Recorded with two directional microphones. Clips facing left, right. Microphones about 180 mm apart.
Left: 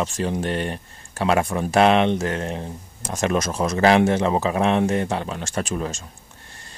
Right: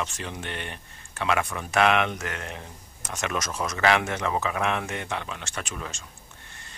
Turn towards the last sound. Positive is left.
turn(degrees=35)  # may be behind; listen again after turning